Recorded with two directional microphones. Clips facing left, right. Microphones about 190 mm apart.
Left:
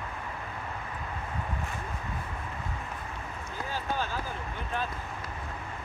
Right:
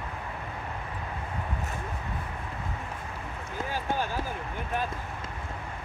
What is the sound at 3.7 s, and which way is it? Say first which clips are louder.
Run: right 2 dB; 15° right (ahead or behind).